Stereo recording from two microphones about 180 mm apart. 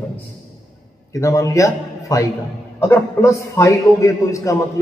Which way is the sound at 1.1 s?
15° left (ahead or behind).